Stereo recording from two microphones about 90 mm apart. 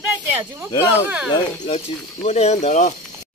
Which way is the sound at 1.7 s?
75° left (ahead or behind).